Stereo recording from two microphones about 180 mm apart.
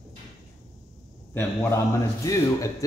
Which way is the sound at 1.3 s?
15° left (ahead or behind).